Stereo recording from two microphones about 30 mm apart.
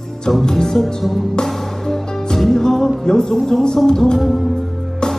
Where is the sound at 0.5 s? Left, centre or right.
Centre.